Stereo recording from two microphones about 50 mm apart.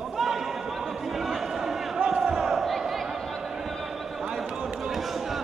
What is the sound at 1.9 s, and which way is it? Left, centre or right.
Crowd, centre.